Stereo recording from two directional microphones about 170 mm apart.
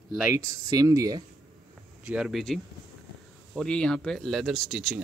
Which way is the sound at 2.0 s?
5° right (ahead or behind).